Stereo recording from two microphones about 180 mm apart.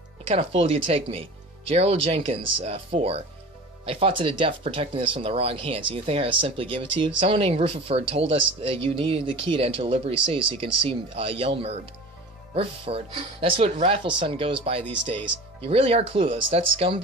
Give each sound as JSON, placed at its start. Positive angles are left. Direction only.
{"t": 0.3, "sound": "speech", "side_deg": -30}